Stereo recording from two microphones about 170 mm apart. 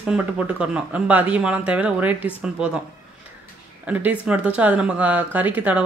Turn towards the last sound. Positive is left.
turn(degrees=-10)  # may be behind; listen again after turning